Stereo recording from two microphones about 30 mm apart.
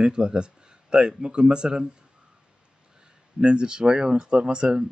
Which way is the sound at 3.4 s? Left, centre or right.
Right.